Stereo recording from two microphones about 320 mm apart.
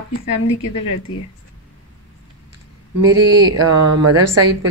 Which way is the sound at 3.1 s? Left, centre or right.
Centre.